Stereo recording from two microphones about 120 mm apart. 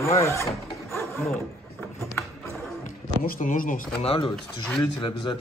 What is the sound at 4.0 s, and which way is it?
Speech, 55° left (ahead or behind).